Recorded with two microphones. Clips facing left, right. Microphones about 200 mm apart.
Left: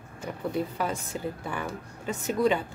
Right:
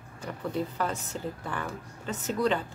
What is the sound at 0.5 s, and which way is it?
A woman's voice, 10° left (ahead or behind).